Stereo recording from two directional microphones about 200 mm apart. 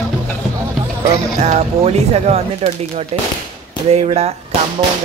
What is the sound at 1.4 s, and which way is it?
Speech, 35° right (ahead or behind).